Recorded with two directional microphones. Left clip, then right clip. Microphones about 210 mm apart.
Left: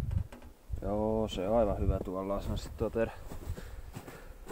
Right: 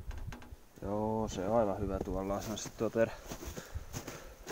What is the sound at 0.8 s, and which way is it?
Speech, 5° right (ahead or behind).